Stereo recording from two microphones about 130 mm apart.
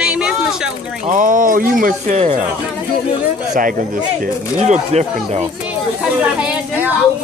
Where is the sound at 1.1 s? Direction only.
90° right.